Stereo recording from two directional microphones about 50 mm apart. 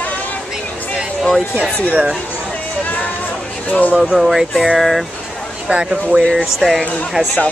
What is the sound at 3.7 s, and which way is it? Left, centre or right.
Speech, left.